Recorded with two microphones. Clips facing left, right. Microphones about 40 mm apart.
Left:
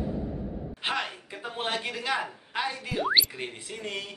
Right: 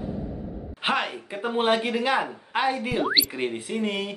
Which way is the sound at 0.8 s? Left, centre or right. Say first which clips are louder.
Right 6 dB; right.